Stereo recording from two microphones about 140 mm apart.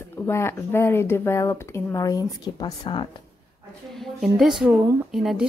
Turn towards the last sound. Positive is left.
turn(degrees=0)  # may be behind; listen again after turning